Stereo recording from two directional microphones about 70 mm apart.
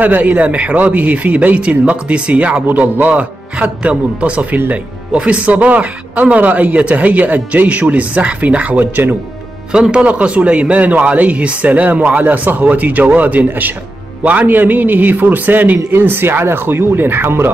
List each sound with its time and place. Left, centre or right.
0.0 s speech: right
9.7 s speech: centre; by 17.5 s right